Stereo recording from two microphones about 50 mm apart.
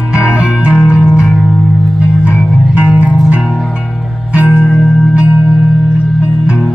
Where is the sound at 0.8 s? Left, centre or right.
Left.